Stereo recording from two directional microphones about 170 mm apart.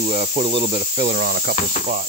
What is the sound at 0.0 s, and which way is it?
Speech, 40° right (ahead or behind).